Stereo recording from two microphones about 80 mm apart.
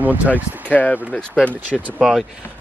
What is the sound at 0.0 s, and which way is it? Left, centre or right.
Speech, right.